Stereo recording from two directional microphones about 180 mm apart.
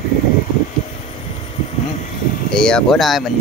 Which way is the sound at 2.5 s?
5° left (ahead or behind).